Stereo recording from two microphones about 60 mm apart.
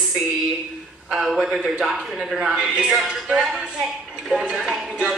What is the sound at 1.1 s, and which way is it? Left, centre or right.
A man's voice, centre.